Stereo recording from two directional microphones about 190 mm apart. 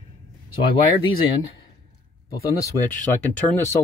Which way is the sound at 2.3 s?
15° left (ahead or behind).